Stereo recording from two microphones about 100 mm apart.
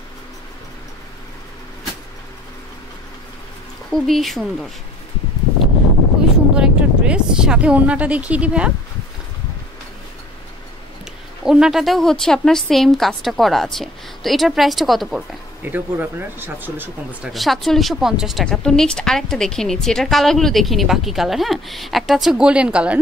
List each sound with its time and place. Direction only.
3.9 s a woman's voice: centre (ahead or behind)
6.5 s speech: 10° right (ahead or behind)
11.4 s a woman's voice: 5° right (ahead or behind)
15.6 s speech: 20° right (ahead or behind)
17.3 s a woman's voice: centre (ahead or behind)
18.4 s a woman's voice: 5° left (ahead or behind); by 22.9 s 10° right (ahead or behind)